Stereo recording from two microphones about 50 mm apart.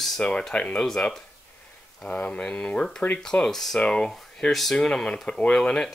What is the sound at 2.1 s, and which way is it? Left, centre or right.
Speech, left.